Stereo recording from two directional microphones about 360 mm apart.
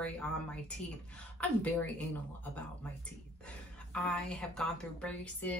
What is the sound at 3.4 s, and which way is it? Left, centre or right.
A woman's voice, centre.